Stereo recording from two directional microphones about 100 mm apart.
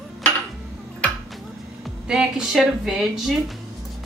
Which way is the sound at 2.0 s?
5° right (ahead or behind).